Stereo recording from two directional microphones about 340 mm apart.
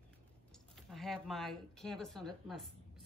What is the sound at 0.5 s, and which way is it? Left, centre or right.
Speech, centre.